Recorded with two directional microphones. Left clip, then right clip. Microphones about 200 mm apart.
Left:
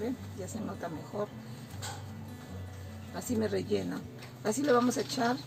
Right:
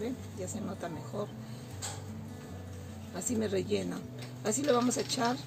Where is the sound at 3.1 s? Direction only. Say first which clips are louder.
Even; 25° right (ahead or behind).